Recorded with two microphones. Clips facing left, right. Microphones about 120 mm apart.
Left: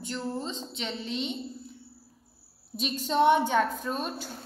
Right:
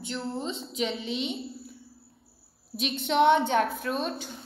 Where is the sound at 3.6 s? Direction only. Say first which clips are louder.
Right 1 dB; 5° right (ahead or behind).